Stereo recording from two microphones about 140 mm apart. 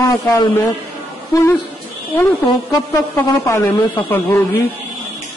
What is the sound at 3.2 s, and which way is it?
Speech, 15° left (ahead or behind).